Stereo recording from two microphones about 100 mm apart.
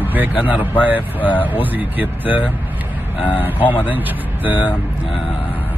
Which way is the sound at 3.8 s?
15° right (ahead or behind).